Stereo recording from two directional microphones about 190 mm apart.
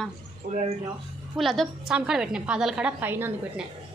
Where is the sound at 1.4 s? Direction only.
Centre (ahead or behind).